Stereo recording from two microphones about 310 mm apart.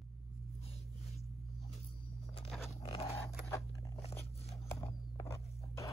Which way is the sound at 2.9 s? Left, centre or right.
Centre.